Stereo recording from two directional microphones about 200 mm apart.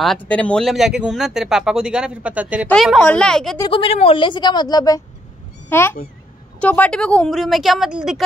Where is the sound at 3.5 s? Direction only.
25° left (ahead or behind).